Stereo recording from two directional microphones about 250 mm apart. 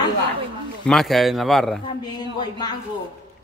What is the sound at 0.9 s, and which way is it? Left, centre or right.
Speech, centre.